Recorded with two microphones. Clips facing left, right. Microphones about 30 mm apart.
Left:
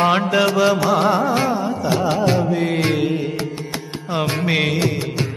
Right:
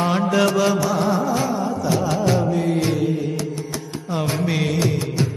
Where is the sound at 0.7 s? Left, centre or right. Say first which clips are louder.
Left 3 dB; left.